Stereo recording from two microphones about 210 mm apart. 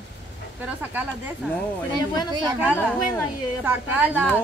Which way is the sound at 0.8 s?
10° right (ahead or behind).